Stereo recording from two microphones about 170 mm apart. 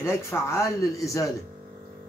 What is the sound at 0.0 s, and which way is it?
Speech, 15° left (ahead or behind).